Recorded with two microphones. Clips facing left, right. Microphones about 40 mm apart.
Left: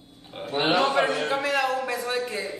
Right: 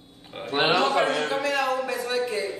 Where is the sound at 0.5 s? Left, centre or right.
Right.